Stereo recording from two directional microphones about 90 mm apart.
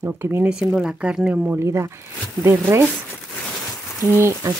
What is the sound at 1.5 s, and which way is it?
Speech, 30° right (ahead or behind).